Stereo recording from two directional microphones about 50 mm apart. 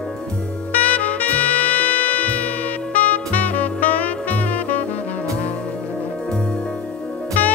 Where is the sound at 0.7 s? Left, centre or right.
Left.